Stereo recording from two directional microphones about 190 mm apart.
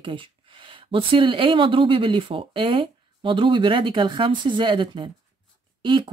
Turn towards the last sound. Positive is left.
turn(degrees=-25)  # may be behind; listen again after turning